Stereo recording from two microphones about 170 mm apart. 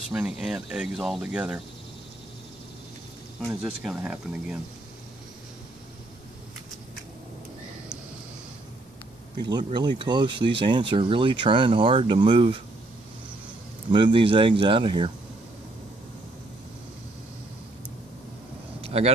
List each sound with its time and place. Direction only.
0.1 s speech: 5° right (ahead or behind)
3.3 s speech: 5° right (ahead or behind)
9.4 s speech: 25° right (ahead or behind)
13.9 s speech: 30° right (ahead or behind)
18.8 s vehicle: 35° right (ahead or behind)